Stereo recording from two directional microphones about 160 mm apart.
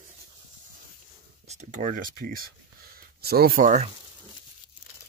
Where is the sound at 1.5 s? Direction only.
45° right (ahead or behind).